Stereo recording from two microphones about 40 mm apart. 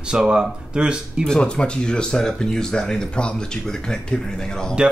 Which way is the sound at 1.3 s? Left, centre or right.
Left.